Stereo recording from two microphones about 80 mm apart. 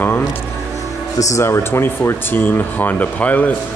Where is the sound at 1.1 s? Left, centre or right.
Left.